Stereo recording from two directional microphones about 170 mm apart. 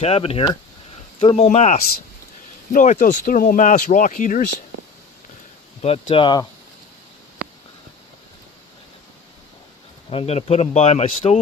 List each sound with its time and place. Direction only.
0.0 s speech: 35° left (ahead or behind); by 4.5 s 55° left (ahead or behind)
5.8 s speech: 35° left (ahead or behind)
10.0 s speech: 35° left (ahead or behind)